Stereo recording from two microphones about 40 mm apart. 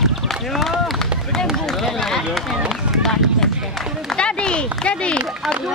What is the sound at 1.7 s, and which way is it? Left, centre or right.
Run, centre.